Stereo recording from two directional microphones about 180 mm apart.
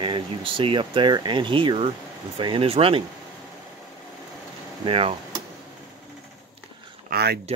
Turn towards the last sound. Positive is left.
turn(degrees=-60)  # may be behind; listen again after turning